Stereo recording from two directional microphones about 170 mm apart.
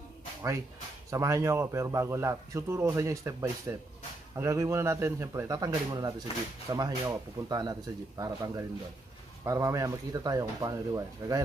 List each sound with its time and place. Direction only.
1.1 s a man's voice: 20° right (ahead or behind)